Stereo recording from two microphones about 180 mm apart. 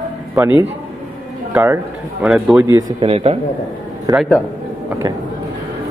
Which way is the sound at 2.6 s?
20° right (ahead or behind).